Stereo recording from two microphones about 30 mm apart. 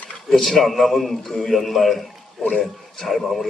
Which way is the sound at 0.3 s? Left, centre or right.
Centre.